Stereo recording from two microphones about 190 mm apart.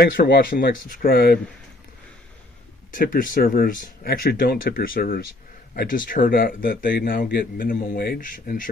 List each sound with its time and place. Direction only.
0.0 s speech: 50° left (ahead or behind)
3.0 s speech: 45° left (ahead or behind)